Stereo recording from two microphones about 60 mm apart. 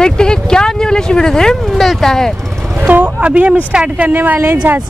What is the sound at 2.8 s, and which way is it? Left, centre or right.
Speech, right.